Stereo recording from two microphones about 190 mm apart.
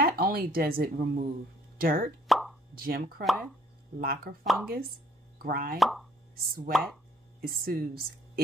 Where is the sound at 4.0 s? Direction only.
50° right (ahead or behind).